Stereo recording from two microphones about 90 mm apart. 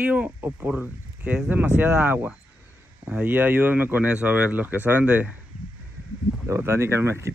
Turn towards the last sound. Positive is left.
turn(degrees=-30)  # may be behind; listen again after turning